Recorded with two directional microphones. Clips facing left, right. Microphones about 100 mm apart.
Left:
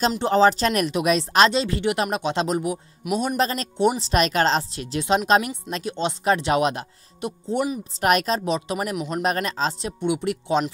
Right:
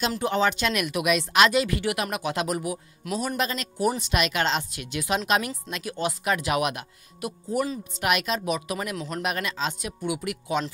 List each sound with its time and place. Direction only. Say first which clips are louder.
0.2 s speech: left 7 dB; 35° left (ahead or behind)
3.3 s a woman's voice: left 5 dB; 35° left (ahead or behind)
4.1 s a woman's voice: left 5 dB; 40° left (ahead or behind); by 7.8 s 20° left (ahead or behind)
8.0 s speech: left 5 dB; 40° left (ahead or behind); by 9.2 s 20° left (ahead or behind)
9.2 s a woman's voice: left 5 dB; 40° left (ahead or behind)